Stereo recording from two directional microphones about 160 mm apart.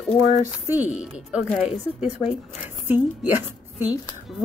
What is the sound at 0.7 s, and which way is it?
A woman's voice, 10° right (ahead or behind).